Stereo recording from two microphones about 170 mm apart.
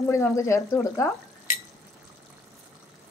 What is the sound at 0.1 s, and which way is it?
A woman's voice, 15° left (ahead or behind).